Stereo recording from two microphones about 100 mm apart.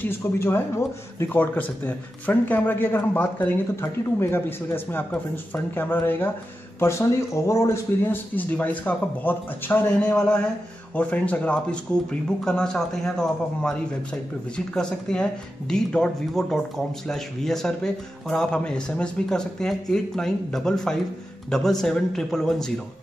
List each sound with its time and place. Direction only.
0.0 s speech: 25° left (ahead or behind); by 22.7 s 5° left (ahead or behind)